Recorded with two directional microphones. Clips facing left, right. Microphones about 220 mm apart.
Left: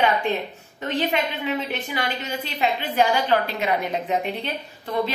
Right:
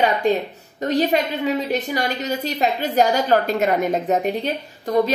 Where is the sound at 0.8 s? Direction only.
40° right (ahead or behind).